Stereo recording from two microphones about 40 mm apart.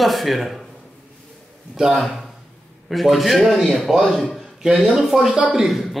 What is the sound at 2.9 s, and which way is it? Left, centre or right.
A man's voice, centre.